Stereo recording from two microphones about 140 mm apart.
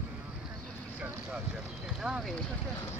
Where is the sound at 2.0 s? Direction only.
5° right (ahead or behind).